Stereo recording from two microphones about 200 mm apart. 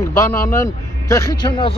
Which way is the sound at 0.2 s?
15° left (ahead or behind).